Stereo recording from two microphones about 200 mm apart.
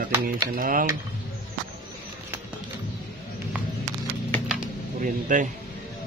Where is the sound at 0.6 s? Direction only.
45° right (ahead or behind).